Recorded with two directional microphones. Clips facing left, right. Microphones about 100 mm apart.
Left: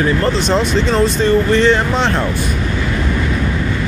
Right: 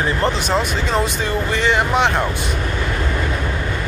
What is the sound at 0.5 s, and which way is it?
Speech, 10° right (ahead or behind).